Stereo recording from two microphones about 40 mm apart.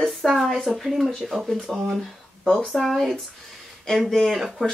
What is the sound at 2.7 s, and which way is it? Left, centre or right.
Speech, centre.